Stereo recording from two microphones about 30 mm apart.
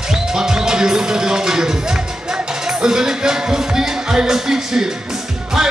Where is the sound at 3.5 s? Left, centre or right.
Right.